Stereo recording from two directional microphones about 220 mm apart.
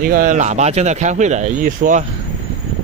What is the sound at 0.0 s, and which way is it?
Speech, 40° right (ahead or behind).